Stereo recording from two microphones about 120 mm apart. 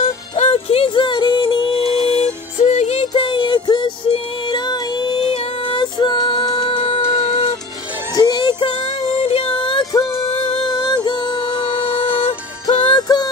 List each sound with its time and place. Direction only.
0.4 s music: 60° left (ahead or behind)
2.6 s music: 65° left (ahead or behind)
3.1 s music: 45° left (ahead or behind)
6.8 s music: 55° left (ahead or behind)
8.2 s music: 40° left (ahead or behind)
9.2 s music: 55° left (ahead or behind)
12.2 s music: 60° left (ahead or behind)
12.9 s music: 35° left (ahead or behind)